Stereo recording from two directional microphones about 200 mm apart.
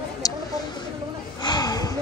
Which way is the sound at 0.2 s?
15° left (ahead or behind).